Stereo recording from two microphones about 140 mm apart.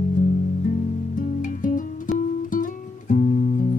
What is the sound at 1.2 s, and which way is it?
Music, 70° left (ahead or behind).